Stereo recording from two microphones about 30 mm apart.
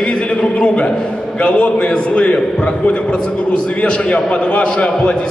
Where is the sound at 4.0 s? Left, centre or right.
Left.